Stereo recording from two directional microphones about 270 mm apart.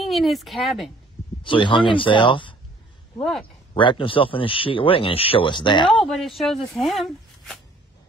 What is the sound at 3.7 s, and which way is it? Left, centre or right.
Speech, centre.